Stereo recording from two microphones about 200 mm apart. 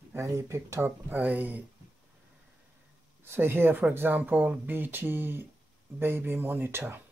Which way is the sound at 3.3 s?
10° right (ahead or behind).